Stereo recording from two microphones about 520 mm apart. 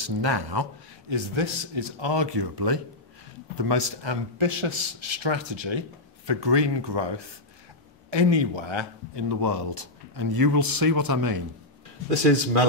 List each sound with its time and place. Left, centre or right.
0.0 s a man's voice: right